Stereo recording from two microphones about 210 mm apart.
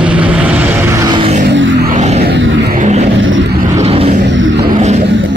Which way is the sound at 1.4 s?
60° right (ahead or behind).